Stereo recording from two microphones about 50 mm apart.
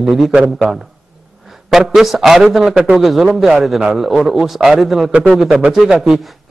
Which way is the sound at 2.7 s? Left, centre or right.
Right.